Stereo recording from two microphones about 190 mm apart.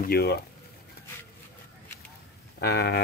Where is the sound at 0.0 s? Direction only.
55° left (ahead or behind).